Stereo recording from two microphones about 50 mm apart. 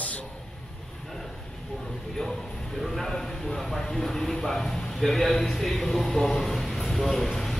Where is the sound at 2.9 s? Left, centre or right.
Centre.